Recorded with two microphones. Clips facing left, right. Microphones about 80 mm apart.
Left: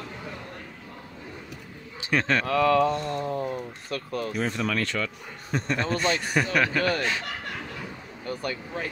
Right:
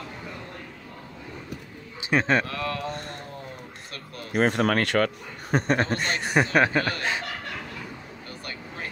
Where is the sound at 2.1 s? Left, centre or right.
Right.